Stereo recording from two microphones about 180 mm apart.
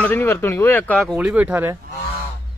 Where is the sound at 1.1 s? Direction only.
10° right (ahead or behind).